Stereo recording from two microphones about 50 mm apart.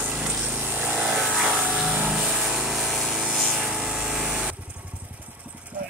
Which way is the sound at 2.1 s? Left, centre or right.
Centre.